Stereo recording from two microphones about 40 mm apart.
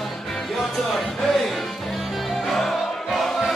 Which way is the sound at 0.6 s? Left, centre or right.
Centre.